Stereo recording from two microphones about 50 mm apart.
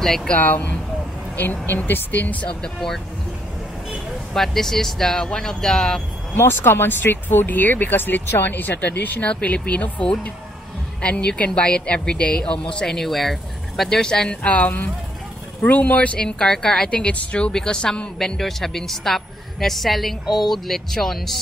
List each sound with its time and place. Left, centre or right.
0.0 s speech: centre
0.4 s speech: left
2.4 s speech: centre
4.4 s speech: centre
6.3 s a woman's voice: left
15.6 s speech: left
16.2 s a woman's voice: centre
18.4 s a woman's voice: centre